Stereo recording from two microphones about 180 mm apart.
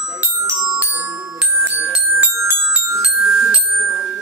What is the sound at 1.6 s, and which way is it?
Music, 10° right (ahead or behind).